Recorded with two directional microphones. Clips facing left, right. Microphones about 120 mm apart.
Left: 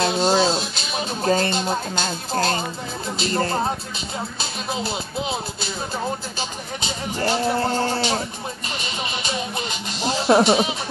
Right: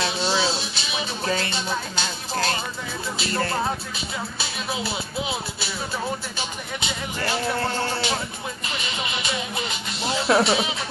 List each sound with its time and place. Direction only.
0.0 s speech: 45° left (ahead or behind); by 3.7 s 30° left (ahead or behind)
6.3 s speech: 30° left (ahead or behind)